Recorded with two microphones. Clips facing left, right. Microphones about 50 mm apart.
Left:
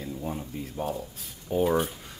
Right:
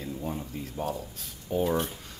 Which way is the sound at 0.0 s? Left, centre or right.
Centre.